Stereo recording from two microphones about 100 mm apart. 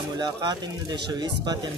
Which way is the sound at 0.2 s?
45° right (ahead or behind).